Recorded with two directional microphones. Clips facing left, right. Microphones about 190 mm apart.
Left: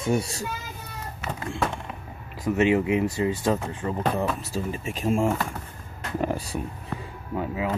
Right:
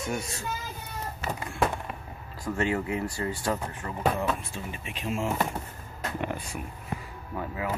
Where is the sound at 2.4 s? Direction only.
20° left (ahead or behind).